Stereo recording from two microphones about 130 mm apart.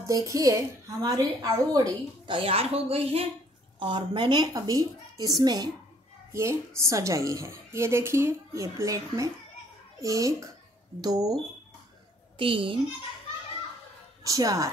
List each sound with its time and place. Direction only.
0.0 s a woman's voice: 25° right (ahead or behind)
2.3 s speech: 50° right (ahead or behind)
3.8 s a woman's voice: 40° right (ahead or behind)
6.3 s a woman's voice: 20° right (ahead or behind)
12.4 s a woman's voice: 40° right (ahead or behind)
14.2 s a woman's voice: 25° right (ahead or behind)